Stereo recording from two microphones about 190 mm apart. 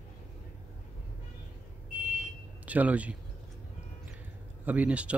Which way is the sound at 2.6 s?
5° right (ahead or behind).